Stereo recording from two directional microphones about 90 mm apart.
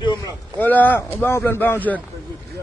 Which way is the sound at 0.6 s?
20° left (ahead or behind).